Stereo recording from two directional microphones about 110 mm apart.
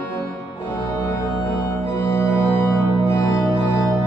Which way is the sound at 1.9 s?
20° left (ahead or behind).